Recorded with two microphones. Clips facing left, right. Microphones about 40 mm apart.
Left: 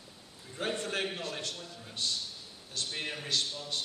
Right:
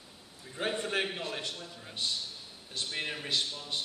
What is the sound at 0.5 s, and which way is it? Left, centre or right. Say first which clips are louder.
A man's voice: right 2 dB; centre.